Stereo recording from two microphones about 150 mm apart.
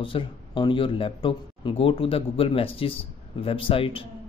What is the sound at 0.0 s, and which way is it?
Speech, 35° left (ahead or behind).